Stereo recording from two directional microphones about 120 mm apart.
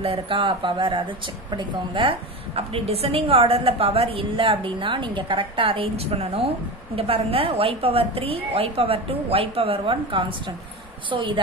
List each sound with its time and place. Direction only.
0.0 s speech: 45° right (ahead or behind)